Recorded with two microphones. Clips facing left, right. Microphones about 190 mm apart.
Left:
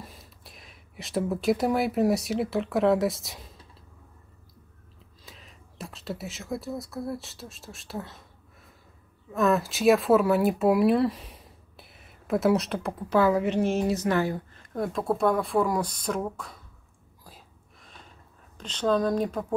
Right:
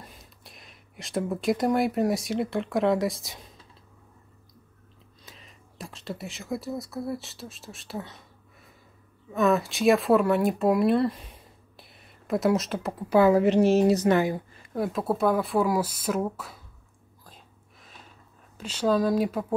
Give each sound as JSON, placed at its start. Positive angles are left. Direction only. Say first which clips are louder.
{"t": 0.0, "sound": "speech", "louder": "left 2 dB", "side_deg": 0}
{"t": 5.2, "sound": "speech", "louder": "left 1 dB", "side_deg": 0}
{"t": 13.3, "sound": "a woman's voice", "louder": "right 5 dB", "side_deg": -35}
{"t": 14.0, "sound": "speech", "louder": "right 3 dB", "side_deg": -15}
{"t": 18.6, "sound": "speech", "louder": "right 1 dB", "side_deg": -10}